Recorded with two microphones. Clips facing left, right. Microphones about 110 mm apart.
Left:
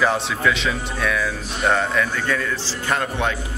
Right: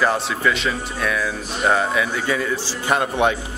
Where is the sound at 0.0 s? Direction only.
Centre (ahead or behind).